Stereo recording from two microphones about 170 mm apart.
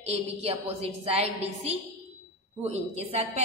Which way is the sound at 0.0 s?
35° right (ahead or behind).